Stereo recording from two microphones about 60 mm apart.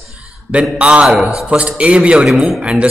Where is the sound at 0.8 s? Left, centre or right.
Centre.